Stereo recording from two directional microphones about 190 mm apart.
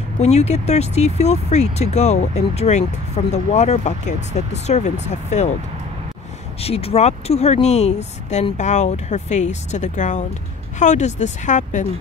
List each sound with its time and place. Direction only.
0.2 s speech: 35° left (ahead or behind)
6.6 s speech: 30° left (ahead or behind)